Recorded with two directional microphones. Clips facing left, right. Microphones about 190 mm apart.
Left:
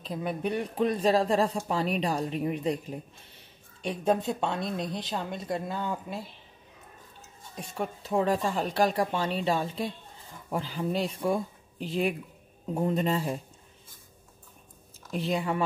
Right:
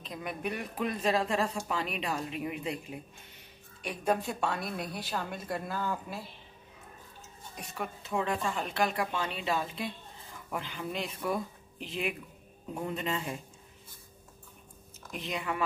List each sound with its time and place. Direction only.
0.0 s speech: 30° left (ahead or behind)
3.8 s a woman's voice: 25° left (ahead or behind)
7.7 s speech: 35° left (ahead or behind)
15.0 s speech: 35° left (ahead or behind)